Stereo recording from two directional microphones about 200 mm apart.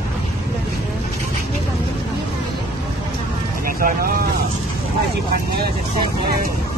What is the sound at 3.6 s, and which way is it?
Speech, 45° right (ahead or behind).